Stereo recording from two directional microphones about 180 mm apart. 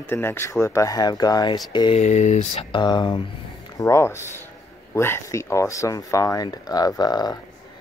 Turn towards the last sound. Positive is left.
turn(degrees=25)  # may be behind; listen again after turning